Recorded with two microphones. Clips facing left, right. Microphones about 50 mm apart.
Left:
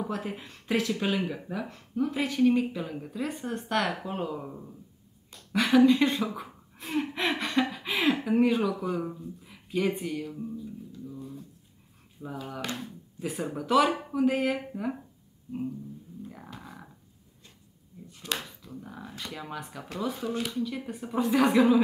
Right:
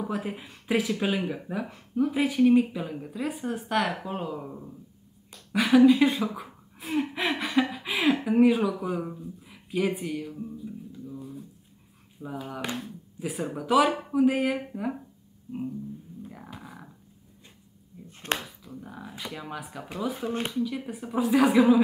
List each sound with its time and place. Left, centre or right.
0.0 s speech: centre
10.6 s a sound: centre
12.4 s speech: centre
16.2 s music: centre
18.0 s a sound: right
18.4 s speech: centre
20.2 s speech: right
20.5 s speech: centre